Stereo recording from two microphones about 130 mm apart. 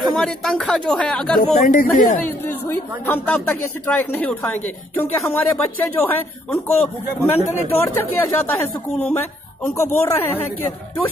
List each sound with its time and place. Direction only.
0.0 s speech: centre (ahead or behind)
1.6 s speech: 90° left
2.2 s a man's voice: 15° left (ahead or behind)